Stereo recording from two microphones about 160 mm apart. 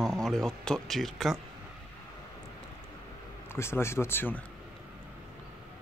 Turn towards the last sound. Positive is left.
turn(degrees=15)  # may be behind; listen again after turning